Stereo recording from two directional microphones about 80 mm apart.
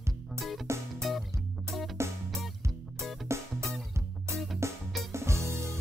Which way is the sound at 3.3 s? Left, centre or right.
Right.